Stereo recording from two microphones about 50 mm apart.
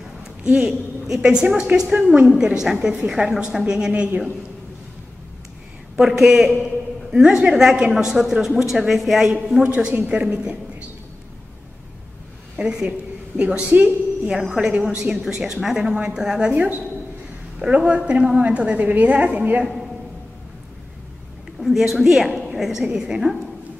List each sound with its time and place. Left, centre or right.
0.5 s a woman's voice: centre
3.9 s a woman's voice: right
5.9 s a woman's voice: centre
9.9 s a woman's voice: right
12.5 s a woman's voice: centre
13.7 s a woman's voice: right
14.4 s a woman's voice: centre
14.7 s a woman's voice: right
16.5 s a woman's voice: right
21.5 s a woman's voice: centre